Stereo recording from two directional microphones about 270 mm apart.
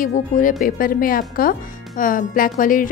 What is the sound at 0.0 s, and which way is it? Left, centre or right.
Speech, left.